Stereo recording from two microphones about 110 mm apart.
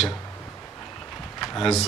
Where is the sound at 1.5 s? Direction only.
5° left (ahead or behind).